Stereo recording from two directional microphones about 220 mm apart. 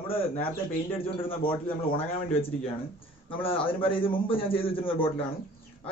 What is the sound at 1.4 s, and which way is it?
A man's voice, 25° left (ahead or behind).